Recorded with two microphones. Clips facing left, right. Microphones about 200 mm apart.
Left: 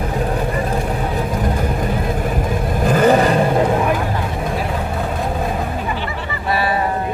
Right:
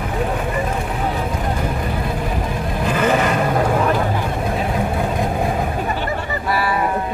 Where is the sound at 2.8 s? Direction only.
40° left (ahead or behind).